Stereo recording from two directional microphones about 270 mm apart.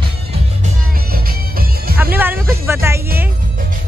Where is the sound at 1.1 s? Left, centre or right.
Right.